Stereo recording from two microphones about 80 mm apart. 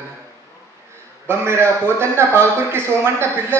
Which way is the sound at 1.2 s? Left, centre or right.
Right.